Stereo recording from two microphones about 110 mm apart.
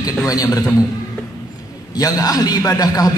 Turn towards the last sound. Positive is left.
turn(degrees=35)  # may be behind; listen again after turning